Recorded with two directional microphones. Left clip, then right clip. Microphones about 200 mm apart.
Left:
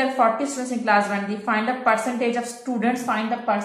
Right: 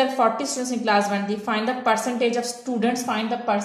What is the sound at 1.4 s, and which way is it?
Speech, 55° right (ahead or behind).